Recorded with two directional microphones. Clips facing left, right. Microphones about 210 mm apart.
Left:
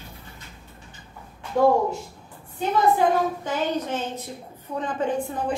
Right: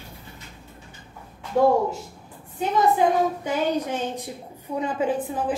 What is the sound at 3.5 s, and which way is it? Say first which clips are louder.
A woman's voice: right 2 dB; 15° right (ahead or behind).